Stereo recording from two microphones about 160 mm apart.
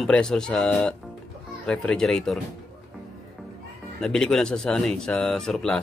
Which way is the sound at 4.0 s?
5° left (ahead or behind).